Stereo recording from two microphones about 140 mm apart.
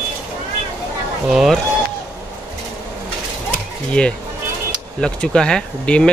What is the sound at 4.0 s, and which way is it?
Speech, 5° left (ahead or behind).